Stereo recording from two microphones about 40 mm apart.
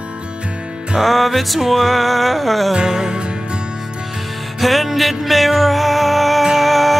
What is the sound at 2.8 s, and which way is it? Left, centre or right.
Music, centre.